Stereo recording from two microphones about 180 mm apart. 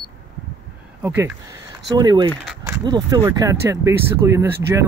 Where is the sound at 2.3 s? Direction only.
Centre (ahead or behind).